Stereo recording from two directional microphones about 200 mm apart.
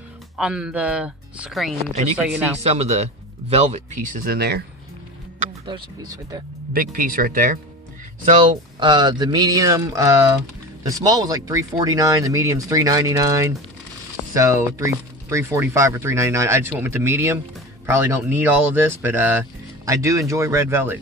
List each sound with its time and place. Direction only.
0.4 s speech: 5° right (ahead or behind)
2.6 s speech: 30° right (ahead or behind); by 4.6 s 50° right (ahead or behind)
5.7 s speech: 20° right (ahead or behind)
6.7 s speech: 45° right (ahead or behind)
8.3 s speech: 25° right (ahead or behind)
18.4 s speech: 10° right (ahead or behind)